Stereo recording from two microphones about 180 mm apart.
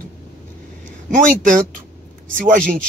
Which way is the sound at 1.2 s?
45° right (ahead or behind).